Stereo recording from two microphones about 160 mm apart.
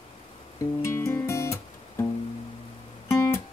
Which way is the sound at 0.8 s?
20° left (ahead or behind).